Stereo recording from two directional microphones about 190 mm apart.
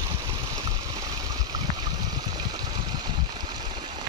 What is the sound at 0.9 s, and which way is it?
Stream, 20° right (ahead or behind).